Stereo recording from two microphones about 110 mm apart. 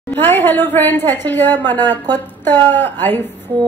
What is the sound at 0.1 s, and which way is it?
A woman's voice, 20° left (ahead or behind).